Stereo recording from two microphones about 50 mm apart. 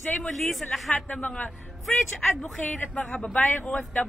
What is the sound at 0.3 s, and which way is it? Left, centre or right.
Speech, centre.